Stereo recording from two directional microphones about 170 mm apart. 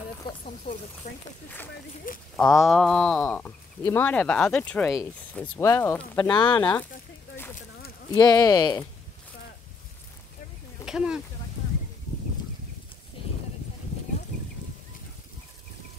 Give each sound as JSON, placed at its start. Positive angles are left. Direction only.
{"t": 1.0, "sound": "speech", "side_deg": 45}
{"t": 2.3, "sound": "a sound", "side_deg": 0}
{"t": 3.8, "sound": "speech", "side_deg": 10}
{"t": 6.1, "sound": "speech", "side_deg": 25}
{"t": 6.6, "sound": "speech", "side_deg": 10}
{"t": 8.1, "sound": "speech", "side_deg": 25}
{"t": 10.9, "sound": "speech", "side_deg": -5}